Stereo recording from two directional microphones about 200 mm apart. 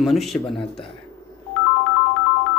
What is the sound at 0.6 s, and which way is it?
Speech, 25° left (ahead or behind).